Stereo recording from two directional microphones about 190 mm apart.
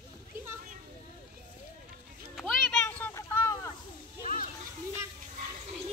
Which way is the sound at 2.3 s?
Centre (ahead or behind).